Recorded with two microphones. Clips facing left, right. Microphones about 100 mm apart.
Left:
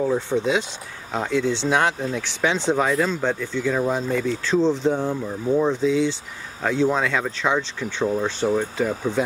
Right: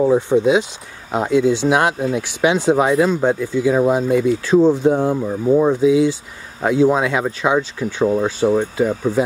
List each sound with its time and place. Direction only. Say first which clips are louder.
0.0 s speech: right 7 dB; 20° right (ahead or behind)
4.9 s speech: right 6 dB; 20° right (ahead or behind)